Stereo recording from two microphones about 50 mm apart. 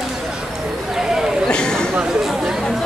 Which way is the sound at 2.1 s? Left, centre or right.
Centre.